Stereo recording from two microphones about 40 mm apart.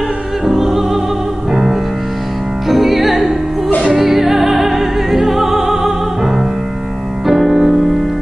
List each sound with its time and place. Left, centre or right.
0.5 s music: centre